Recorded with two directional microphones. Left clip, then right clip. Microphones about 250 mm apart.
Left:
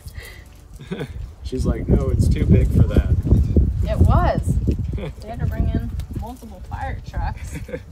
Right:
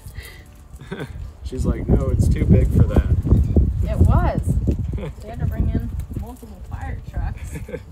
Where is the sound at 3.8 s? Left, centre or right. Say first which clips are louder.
Left 5 dB; left.